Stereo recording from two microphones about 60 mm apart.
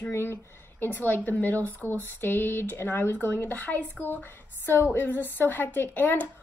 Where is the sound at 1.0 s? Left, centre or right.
Left.